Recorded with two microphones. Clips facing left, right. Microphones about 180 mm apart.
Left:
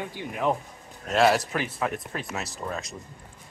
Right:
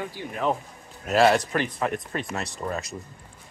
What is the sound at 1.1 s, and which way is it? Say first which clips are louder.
Speech: right 2 dB; centre (ahead or behind).